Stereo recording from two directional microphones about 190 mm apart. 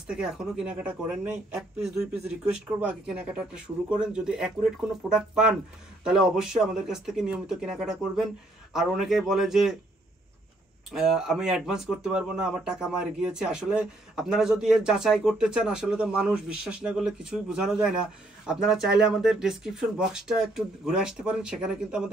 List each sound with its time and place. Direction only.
0.0 s speech: 5° right (ahead or behind)
2.8 s speech: 5° right (ahead or behind)
10.9 s speech: centre (ahead or behind)